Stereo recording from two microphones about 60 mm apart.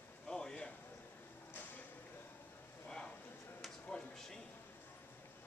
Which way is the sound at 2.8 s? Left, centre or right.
Centre.